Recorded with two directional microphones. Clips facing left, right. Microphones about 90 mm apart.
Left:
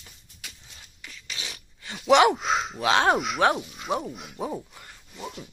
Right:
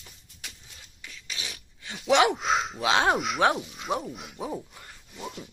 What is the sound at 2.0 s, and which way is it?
Gasp, centre (ahead or behind).